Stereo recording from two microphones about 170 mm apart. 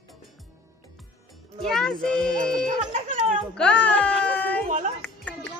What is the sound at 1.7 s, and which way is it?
Speech, centre (ahead or behind).